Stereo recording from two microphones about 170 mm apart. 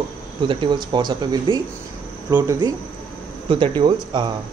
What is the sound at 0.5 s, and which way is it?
Speech, 30° right (ahead or behind).